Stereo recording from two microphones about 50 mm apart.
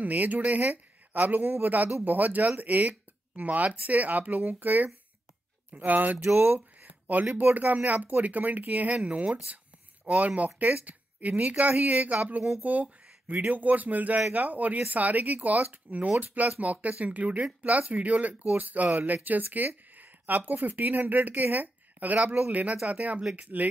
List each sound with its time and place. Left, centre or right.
0.0 s speech: right
6.3 s speech: right
6.9 s speech: right